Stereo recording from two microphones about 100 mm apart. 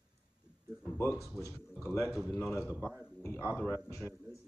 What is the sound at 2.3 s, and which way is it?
A man's voice, 30° left (ahead or behind).